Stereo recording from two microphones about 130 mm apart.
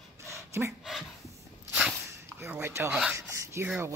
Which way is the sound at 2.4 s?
20° right (ahead or behind).